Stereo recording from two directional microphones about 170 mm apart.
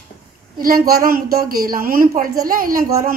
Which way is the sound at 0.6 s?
60° right (ahead or behind).